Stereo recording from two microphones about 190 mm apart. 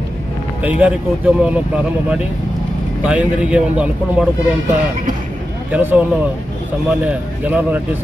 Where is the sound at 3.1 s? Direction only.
5° right (ahead or behind).